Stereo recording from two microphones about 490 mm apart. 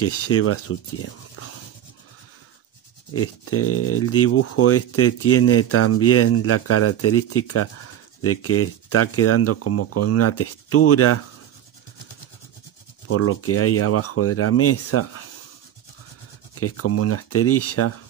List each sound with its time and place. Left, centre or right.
0.0 s speech: left
3.1 s speech: left
13.1 s speech: left
16.5 s speech: left